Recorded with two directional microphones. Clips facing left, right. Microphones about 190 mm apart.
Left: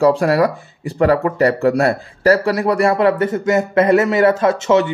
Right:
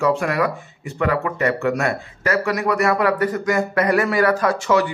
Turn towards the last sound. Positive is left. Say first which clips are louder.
# left 4 dB
turn(degrees=25)  # may be behind; listen again after turning